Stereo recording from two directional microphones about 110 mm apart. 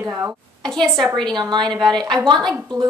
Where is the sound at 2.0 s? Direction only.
40° right (ahead or behind).